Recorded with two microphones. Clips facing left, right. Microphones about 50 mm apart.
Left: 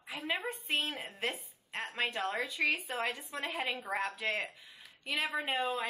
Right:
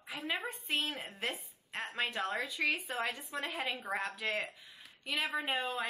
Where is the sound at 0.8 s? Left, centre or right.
Left.